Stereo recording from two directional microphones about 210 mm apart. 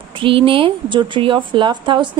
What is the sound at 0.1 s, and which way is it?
A woman's voice, 25° right (ahead or behind).